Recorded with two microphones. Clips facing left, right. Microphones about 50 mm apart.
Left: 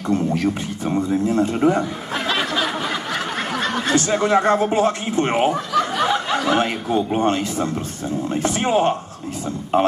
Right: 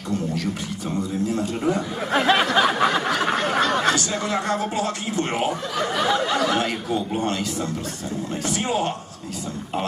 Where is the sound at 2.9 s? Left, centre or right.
Right.